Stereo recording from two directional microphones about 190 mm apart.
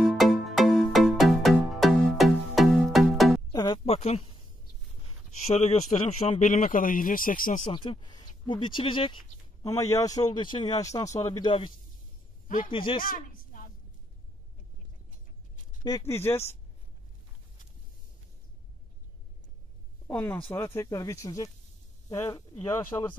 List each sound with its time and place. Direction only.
0.0 s music: centre (ahead or behind)
3.5 s music: 20° left (ahead or behind)
3.8 s a sound: 35° left (ahead or behind)
5.6 s speech: 35° left (ahead or behind)
7.7 s speech: 25° left (ahead or behind)
9.7 s speech: 15° left (ahead or behind)
12.4 s a man's voice: 45° left (ahead or behind)
12.7 s speech: 25° left (ahead or behind)
13.0 s a sound: 50° left (ahead or behind)
15.0 s a sound: 45° left (ahead or behind)
16.1 s speech: 15° left (ahead or behind)
20.1 s speech: 10° left (ahead or behind)